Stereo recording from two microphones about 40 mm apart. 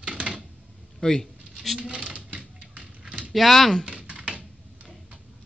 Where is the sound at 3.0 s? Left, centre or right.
Right.